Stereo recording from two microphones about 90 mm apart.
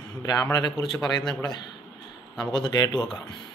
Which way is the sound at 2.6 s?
45° left (ahead or behind).